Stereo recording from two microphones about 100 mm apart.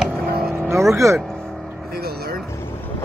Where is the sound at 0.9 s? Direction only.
30° right (ahead or behind).